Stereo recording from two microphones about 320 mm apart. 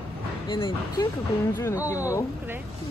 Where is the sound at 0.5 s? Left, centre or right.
Centre.